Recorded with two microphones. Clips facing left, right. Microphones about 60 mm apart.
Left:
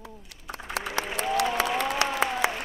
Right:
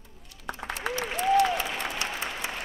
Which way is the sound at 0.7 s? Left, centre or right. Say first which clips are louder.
Left 2 dB; left.